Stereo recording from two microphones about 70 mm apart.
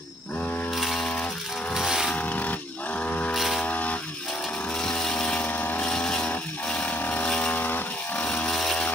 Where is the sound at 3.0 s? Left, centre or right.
Left.